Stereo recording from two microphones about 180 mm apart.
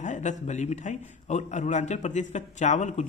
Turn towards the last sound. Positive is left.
turn(degrees=40)  # may be behind; listen again after turning